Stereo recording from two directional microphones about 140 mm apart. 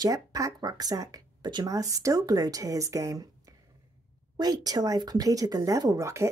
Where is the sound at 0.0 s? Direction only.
25° right (ahead or behind).